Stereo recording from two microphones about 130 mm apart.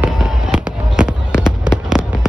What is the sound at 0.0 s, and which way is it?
Fireworks, 5° right (ahead or behind).